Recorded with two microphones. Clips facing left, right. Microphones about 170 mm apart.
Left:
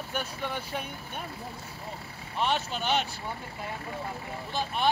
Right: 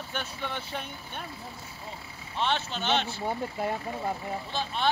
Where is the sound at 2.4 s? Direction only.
10° left (ahead or behind).